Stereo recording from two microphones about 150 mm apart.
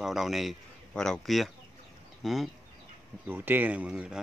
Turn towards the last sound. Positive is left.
turn(degrees=-5)  # may be behind; listen again after turning